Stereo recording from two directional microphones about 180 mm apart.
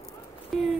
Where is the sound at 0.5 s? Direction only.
Centre (ahead or behind).